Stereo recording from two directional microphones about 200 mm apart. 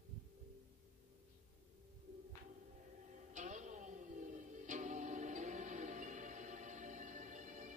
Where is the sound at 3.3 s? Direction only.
40° right (ahead or behind).